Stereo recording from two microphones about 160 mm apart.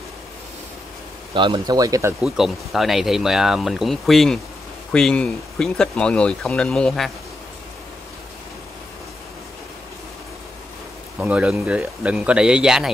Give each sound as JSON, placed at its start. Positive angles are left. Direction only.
{"t": 1.3, "sound": "speech", "side_deg": -30}
{"t": 2.2, "sound": "speech", "side_deg": 0}
{"t": 11.1, "sound": "speech", "side_deg": -5}